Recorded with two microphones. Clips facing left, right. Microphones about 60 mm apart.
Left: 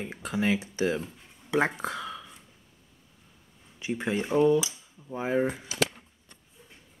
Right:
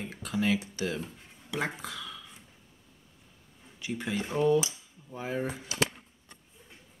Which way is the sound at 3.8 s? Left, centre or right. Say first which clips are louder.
Left 4 dB; left.